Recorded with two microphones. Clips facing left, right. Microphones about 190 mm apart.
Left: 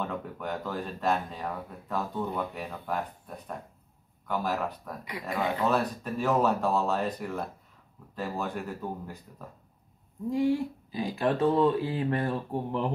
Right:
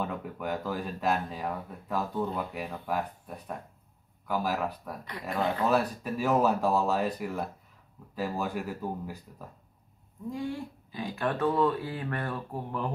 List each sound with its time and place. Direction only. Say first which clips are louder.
0.0 s speech: even; 5° right (ahead or behind)
10.3 s speech: left 9 dB; 15° left (ahead or behind)